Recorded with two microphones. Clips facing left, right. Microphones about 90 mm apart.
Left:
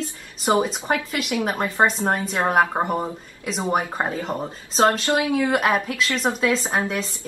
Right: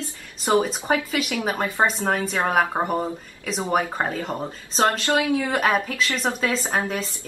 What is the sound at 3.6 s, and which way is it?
Speech, 20° left (ahead or behind).